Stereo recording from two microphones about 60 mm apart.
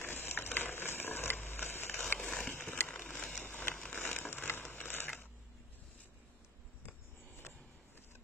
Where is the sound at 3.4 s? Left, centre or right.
Left.